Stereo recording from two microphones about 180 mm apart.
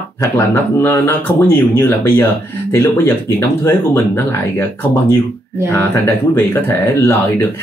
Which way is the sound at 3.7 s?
15° left (ahead or behind).